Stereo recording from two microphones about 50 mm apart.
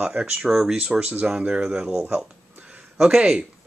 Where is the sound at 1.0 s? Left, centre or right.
Right.